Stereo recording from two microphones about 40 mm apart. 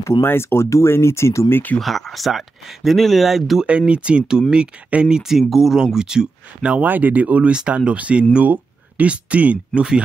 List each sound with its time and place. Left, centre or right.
0.2 s speech: left
1.8 s speech: centre
3.6 s speech: right
6.8 s speech: right